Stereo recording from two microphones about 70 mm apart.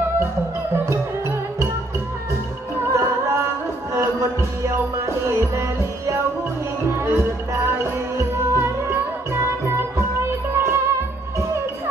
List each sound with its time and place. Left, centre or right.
0.8 s music: right
2.9 s music: right